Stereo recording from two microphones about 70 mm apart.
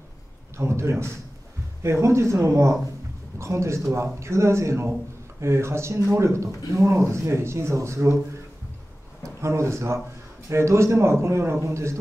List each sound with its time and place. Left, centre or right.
0.6 s speech: right
9.4 s speech: right